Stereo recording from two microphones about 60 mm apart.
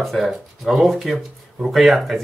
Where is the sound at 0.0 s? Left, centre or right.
Centre.